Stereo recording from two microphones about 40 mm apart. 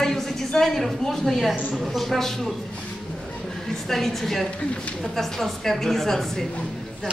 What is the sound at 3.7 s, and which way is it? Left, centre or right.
A woman's voice, centre.